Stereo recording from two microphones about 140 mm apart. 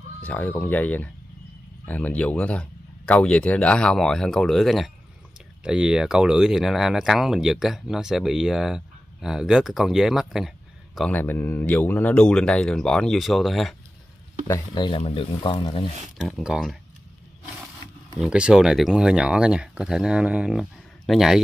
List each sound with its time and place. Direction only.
0.2 s speech: 10° left (ahead or behind)
11.1 s speech: 15° left (ahead or behind)
14.7 s speech: 35° left (ahead or behind)
16.2 s speech: centre (ahead or behind)
18.2 s speech: 5° right (ahead or behind)